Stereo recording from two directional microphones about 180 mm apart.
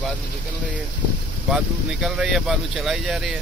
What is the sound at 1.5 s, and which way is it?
Speech, centre (ahead or behind).